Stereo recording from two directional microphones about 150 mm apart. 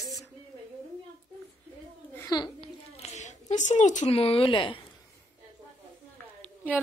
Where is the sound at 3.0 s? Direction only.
50° left (ahead or behind); by 4.8 s 35° left (ahead or behind).